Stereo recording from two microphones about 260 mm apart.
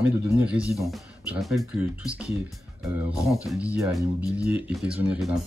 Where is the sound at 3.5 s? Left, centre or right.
Centre.